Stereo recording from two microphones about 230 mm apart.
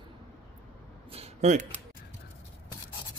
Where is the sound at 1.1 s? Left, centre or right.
Right.